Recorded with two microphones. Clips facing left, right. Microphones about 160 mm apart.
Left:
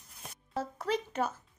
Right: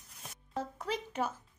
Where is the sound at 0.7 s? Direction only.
10° right (ahead or behind).